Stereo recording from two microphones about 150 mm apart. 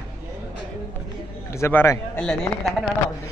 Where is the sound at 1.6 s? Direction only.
15° left (ahead or behind).